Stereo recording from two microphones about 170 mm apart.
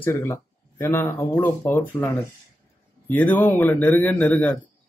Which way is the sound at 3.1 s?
10° left (ahead or behind).